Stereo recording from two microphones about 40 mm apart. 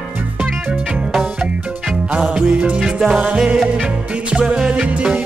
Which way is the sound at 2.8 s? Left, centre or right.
Centre.